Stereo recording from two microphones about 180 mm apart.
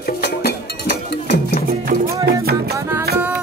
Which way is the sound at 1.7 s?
55° right (ahead or behind).